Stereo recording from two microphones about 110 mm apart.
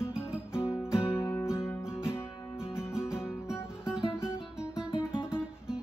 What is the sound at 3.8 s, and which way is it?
Music, 5° right (ahead or behind).